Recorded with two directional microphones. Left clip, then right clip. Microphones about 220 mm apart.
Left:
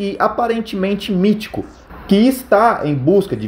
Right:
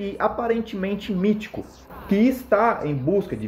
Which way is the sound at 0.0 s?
40° left (ahead or behind).